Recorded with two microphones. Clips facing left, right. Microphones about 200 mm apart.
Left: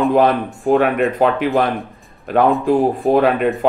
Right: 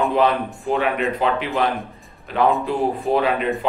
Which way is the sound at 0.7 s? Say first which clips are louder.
Left 6 dB; 50° left (ahead or behind).